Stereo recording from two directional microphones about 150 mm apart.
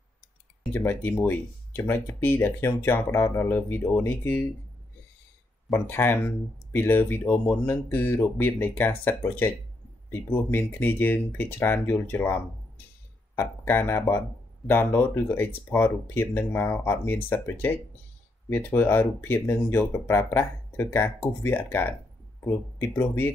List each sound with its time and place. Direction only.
0.7 s speech: 15° left (ahead or behind)
5.7 s speech: 15° left (ahead or behind)